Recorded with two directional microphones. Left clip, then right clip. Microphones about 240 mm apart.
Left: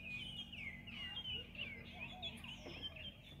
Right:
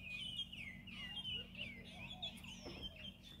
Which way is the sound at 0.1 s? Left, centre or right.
Right.